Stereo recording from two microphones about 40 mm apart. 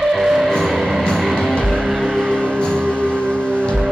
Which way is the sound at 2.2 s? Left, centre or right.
Left.